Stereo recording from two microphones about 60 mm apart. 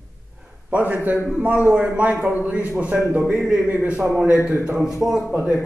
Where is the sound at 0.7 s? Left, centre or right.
Right.